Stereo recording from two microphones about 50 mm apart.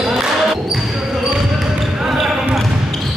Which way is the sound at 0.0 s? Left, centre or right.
Centre.